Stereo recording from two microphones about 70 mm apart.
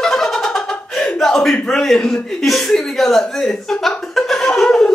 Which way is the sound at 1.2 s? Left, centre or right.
Centre.